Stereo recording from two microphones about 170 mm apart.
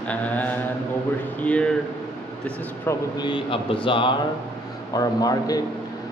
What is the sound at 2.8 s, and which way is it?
A man's voice, 25° left (ahead or behind).